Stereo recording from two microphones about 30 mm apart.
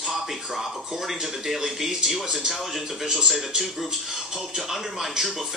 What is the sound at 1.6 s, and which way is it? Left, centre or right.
Speech, centre.